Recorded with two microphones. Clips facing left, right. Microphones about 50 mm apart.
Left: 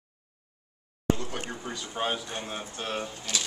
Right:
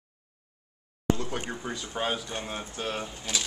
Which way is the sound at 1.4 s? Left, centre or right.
Centre.